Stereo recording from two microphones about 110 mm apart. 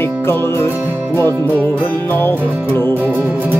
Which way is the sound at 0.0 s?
20° left (ahead or behind).